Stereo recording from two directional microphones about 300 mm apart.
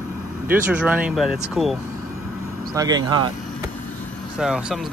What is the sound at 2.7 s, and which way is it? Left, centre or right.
Speech, centre.